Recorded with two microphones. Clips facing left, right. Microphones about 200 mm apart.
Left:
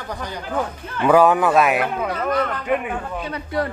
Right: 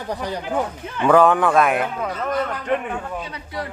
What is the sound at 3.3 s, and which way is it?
Speech, 55° left (ahead or behind).